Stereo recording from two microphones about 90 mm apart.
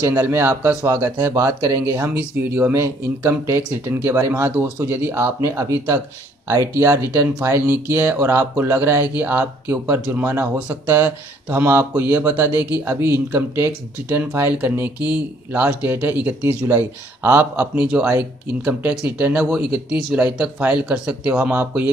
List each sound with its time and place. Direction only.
0.0 s speech: 35° right (ahead or behind)
17.7 s speech: 10° right (ahead or behind)